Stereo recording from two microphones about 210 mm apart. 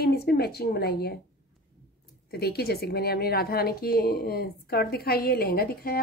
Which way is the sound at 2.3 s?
50° left (ahead or behind).